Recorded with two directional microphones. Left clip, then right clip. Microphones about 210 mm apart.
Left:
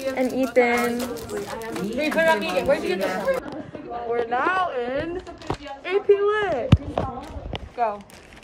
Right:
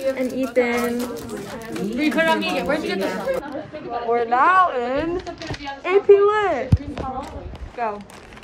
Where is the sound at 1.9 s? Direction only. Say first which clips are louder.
Right 1 dB; 45° left (ahead or behind).